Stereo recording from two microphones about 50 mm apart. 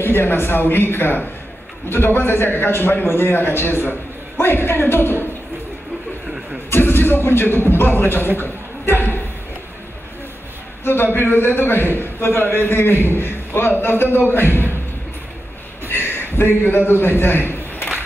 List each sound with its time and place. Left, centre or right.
0.0 s a man's voice: left
6.7 s music: left
7.7 s a man's voice: left
8.4 s a sound: left
10.8 s a man's voice: left
15.9 s a sound: left
16.6 s a man's voice: left